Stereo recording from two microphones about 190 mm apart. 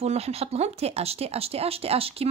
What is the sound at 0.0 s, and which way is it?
Speech, 35° right (ahead or behind).